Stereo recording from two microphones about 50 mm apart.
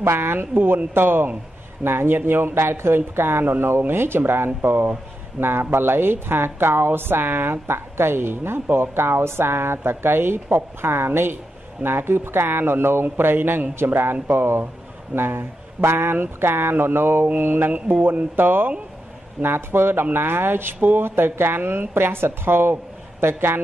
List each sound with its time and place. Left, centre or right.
0.0 s speech: right
8.6 s speech: right
8.9 s speech: right